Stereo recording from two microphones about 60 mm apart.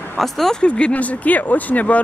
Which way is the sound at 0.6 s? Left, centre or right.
Centre.